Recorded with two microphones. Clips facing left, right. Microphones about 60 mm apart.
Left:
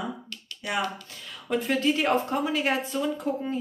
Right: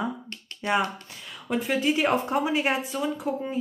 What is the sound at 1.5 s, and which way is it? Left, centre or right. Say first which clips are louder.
A woman's voice: even; centre.